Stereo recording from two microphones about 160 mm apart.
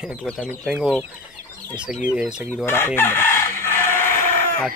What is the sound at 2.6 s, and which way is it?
Chicken, 15° left (ahead or behind).